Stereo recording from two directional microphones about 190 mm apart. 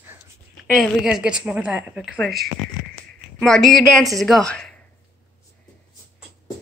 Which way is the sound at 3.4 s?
5° left (ahead or behind).